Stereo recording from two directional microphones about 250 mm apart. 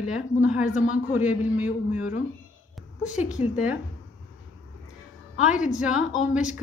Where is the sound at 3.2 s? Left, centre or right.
Centre.